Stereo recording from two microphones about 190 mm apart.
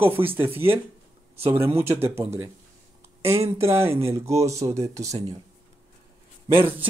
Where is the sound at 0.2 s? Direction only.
30° right (ahead or behind).